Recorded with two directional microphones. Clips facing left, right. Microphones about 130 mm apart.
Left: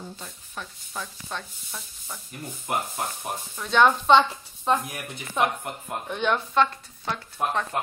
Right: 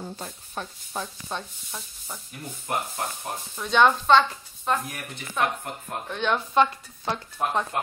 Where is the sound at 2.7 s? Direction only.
5° left (ahead or behind).